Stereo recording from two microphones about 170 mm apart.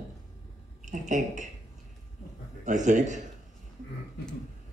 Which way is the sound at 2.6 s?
45° right (ahead or behind).